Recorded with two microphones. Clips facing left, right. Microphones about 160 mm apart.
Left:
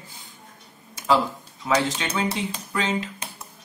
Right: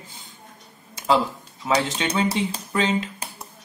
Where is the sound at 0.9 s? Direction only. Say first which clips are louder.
Right 1 dB; 20° right (ahead or behind).